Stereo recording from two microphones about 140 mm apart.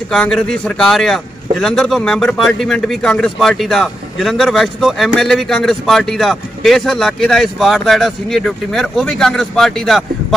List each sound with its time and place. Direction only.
0.1 s a man's voice: 5° left (ahead or behind)